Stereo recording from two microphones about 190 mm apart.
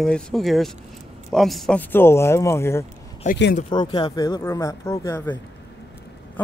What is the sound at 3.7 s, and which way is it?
Speech, 20° left (ahead or behind).